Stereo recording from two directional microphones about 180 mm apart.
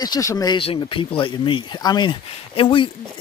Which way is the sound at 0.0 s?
20° left (ahead or behind).